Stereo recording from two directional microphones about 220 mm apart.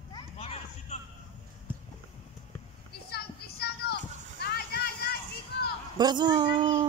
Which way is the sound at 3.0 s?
45° left (ahead or behind).